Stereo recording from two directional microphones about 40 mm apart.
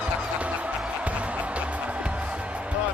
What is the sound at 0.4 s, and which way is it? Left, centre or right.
Music, right.